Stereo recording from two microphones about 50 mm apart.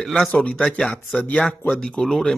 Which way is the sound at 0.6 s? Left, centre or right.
Centre.